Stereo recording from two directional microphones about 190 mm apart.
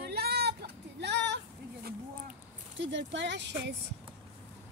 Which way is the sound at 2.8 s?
70° right (ahead or behind).